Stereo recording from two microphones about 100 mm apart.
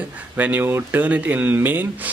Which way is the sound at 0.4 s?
20° right (ahead or behind).